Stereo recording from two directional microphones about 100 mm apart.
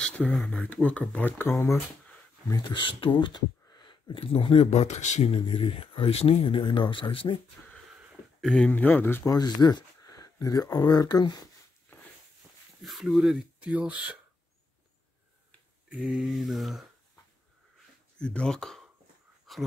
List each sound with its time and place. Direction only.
0.0 s speech: 5° left (ahead or behind)
0.8 s speech: 10° left (ahead or behind)
2.5 s speech: 50° left (ahead or behind)
7.6 s sniff: 15° left (ahead or behind)
7.9 s a sound: 10° right (ahead or behind)
8.4 s speech: 5° left (ahead or behind)
8.7 s speech: 15° left (ahead or behind)
9.2 s speech: 40° left (ahead or behind)
12.8 s speech: centre (ahead or behind)
15.9 s speech: 5° right (ahead or behind)
18.2 s speech: 10° left (ahead or behind)
19.5 s a sound: centre (ahead or behind)